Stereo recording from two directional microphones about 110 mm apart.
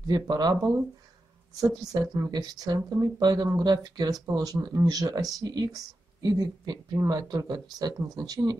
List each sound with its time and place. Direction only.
0.0 s speech: 40° right (ahead or behind)
1.9 s speech: 35° right (ahead or behind)